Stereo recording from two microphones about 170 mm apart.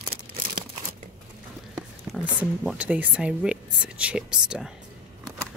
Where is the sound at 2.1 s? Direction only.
Centre (ahead or behind).